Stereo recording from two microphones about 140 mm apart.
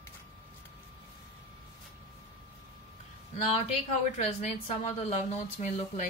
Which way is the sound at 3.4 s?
50° left (ahead or behind).